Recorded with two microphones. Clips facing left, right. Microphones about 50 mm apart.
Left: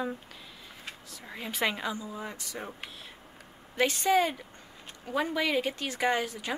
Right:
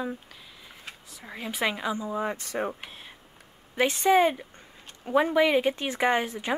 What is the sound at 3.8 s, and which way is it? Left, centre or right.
Speech, centre.